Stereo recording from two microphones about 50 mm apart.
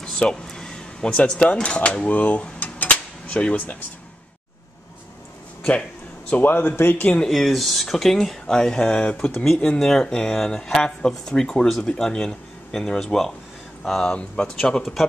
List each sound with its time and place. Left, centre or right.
0.5 s speech: centre; by 2.4 s left
2.6 s dishes: left
3.3 s speech: centre
6.4 s speech: left
7.2 s speech: centre